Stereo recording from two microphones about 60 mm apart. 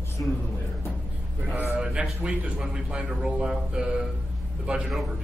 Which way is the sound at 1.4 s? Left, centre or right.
Right.